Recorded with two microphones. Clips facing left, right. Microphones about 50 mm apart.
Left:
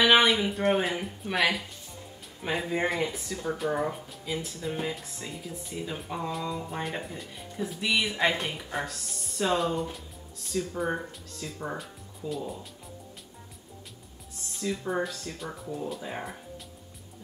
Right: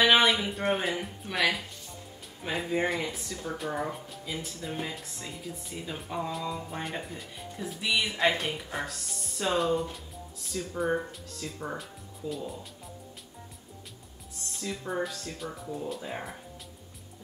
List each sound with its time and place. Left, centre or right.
0.0 s speech: centre
14.5 s speech: centre